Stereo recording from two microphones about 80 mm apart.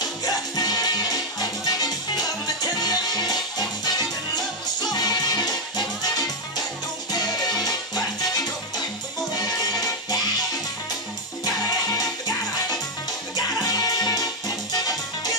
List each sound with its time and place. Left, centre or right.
0.2 s music: left
11.9 s music: left
13.6 s music: left